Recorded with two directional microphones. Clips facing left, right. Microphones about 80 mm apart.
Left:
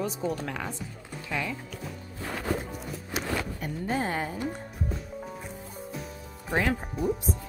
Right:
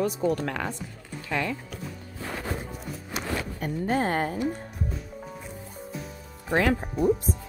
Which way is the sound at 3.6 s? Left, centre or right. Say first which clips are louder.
Right 6 dB; right.